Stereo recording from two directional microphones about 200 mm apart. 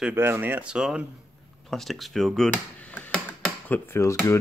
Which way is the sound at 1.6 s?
Centre (ahead or behind).